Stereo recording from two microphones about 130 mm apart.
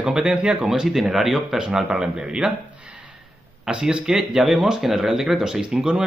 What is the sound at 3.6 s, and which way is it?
Speech, 5° right (ahead or behind).